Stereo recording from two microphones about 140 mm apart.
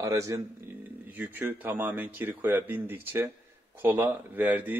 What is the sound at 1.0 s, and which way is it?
Speech, 15° right (ahead or behind).